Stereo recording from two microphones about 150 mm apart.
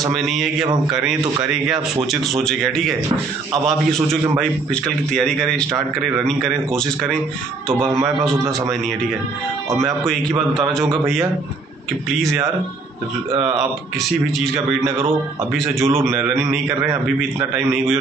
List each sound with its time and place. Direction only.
0.1 s a man's voice: centre (ahead or behind)
2.0 s a man's voice: centre (ahead or behind)
7.9 s a man's voice: 20° right (ahead or behind)
12.1 s a man's voice: centre (ahead or behind)
14.5 s a man's voice: 20° right (ahead or behind)